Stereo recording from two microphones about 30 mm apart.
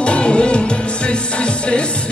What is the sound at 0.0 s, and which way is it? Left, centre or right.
Music, left.